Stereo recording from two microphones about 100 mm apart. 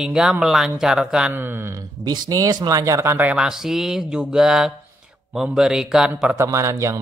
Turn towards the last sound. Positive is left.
turn(degrees=-30)  # may be behind; listen again after turning